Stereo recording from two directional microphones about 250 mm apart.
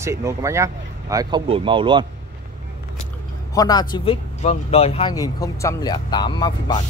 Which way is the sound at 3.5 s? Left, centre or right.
Centre.